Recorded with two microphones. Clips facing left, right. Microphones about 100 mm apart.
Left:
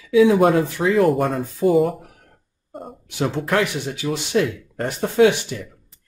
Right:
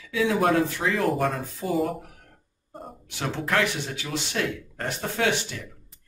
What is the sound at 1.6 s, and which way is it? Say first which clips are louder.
Speech: left 11 dB; 55° left (ahead or behind).